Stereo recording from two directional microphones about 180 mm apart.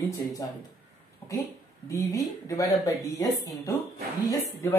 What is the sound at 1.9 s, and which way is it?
A man's voice, 20° left (ahead or behind).